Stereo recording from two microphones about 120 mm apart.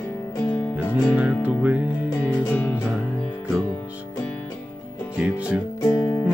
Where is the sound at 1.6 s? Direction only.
10° right (ahead or behind).